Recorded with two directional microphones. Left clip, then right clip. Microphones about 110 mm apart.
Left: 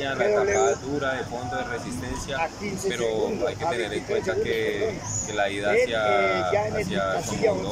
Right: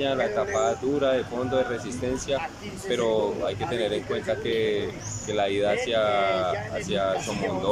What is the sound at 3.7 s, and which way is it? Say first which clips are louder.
Speech: even; 25° right (ahead or behind).